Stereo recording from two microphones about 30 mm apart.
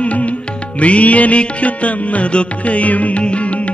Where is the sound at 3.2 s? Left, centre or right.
Left.